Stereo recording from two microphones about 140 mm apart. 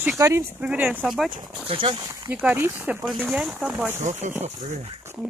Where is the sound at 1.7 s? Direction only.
40° right (ahead or behind).